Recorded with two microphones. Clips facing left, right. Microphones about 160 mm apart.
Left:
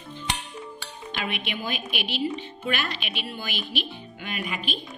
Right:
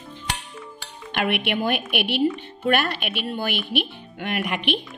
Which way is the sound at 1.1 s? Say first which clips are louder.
Right 8 dB; 65° right (ahead or behind).